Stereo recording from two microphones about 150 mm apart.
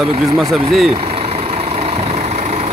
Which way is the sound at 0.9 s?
45° right (ahead or behind).